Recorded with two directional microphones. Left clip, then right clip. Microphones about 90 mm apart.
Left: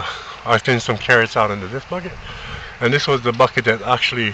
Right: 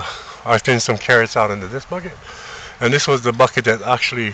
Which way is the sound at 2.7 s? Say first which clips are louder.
Right 1 dB; 65° right (ahead or behind).